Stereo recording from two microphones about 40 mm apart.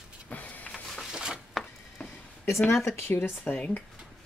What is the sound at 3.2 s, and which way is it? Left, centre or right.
Speech, left.